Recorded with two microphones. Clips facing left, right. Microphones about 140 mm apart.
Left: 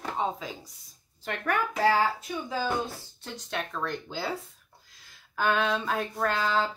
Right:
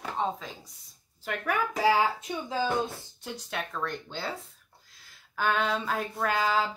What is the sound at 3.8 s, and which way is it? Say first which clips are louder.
Speech: left 2 dB; 5° left (ahead or behind).